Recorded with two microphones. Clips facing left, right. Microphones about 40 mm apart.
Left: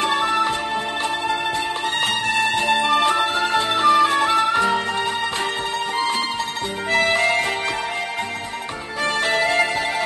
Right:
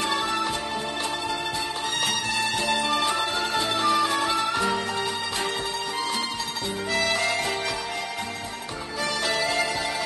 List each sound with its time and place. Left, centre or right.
0.1 s music: centre
2.6 s music: centre
4.4 s music: left
6.9 s music: left
9.4 s music: left